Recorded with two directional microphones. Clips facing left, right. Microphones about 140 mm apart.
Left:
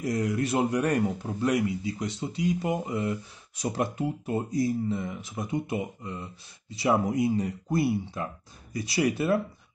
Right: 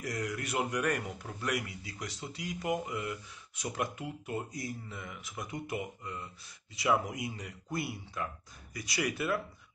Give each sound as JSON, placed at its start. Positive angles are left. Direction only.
{"t": 0.0, "sound": "speech", "side_deg": 25}